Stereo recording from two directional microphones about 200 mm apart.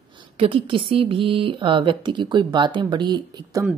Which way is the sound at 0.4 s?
25° right (ahead or behind).